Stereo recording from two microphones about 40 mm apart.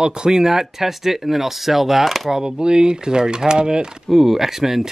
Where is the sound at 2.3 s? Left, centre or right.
Centre.